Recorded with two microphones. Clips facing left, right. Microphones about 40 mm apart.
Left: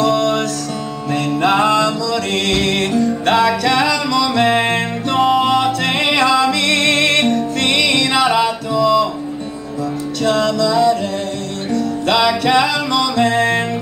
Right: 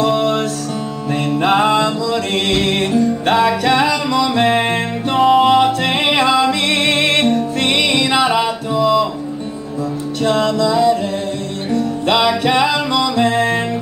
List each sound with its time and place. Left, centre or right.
0.0 s music: right
10.2 s music: right